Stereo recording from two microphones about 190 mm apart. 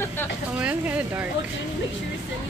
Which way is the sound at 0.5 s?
5° right (ahead or behind).